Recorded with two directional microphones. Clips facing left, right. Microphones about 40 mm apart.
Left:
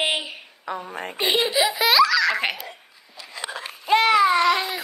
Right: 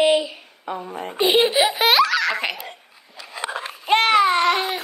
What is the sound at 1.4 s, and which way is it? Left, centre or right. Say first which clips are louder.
Speech: right 3 dB; right.